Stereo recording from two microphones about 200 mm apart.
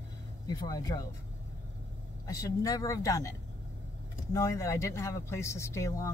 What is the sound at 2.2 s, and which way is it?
Speech, 15° left (ahead or behind).